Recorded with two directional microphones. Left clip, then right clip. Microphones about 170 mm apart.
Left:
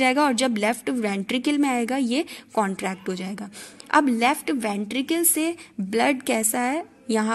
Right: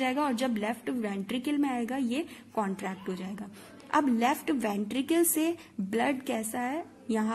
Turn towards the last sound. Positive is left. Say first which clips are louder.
# left 7 dB
turn(degrees=15)  # may be behind; listen again after turning